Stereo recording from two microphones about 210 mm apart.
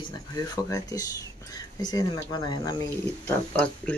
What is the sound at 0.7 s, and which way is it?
Speech, 15° left (ahead or behind).